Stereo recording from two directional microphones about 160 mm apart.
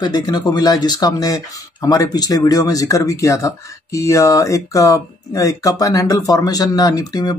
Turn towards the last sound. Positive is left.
turn(degrees=25)  # may be behind; listen again after turning